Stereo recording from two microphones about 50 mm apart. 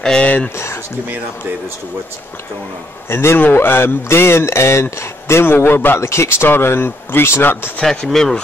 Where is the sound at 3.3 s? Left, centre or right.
Left.